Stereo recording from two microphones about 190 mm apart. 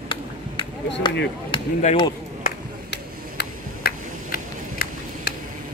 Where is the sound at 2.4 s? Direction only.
50° left (ahead or behind).